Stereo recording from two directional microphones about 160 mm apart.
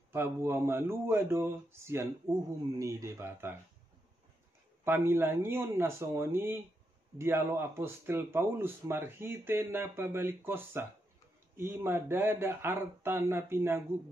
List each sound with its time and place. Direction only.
0.1 s speech: 15° right (ahead or behind)
4.8 s speech: 15° right (ahead or behind)